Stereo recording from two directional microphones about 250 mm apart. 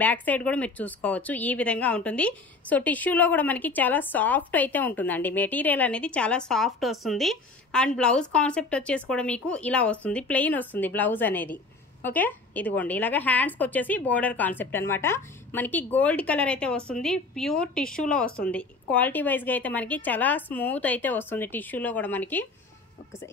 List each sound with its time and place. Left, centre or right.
0.0 s a woman's voice: centre